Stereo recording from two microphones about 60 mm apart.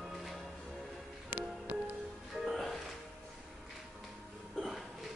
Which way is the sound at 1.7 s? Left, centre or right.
Right.